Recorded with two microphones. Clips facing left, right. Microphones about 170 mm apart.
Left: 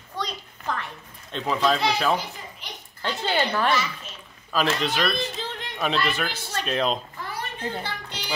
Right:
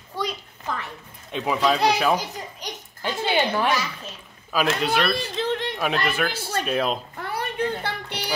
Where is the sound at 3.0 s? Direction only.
15° right (ahead or behind).